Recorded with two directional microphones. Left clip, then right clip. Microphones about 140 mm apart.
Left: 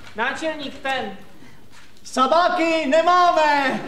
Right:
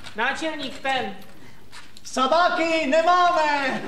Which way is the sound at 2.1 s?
25° right (ahead or behind).